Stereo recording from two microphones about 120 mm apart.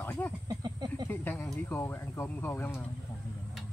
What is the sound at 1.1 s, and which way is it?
Speech, 15° left (ahead or behind).